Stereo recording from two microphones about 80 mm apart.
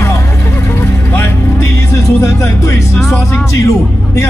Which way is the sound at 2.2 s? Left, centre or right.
Left.